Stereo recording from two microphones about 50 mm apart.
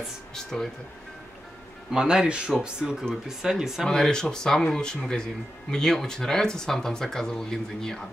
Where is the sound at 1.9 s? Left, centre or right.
Centre.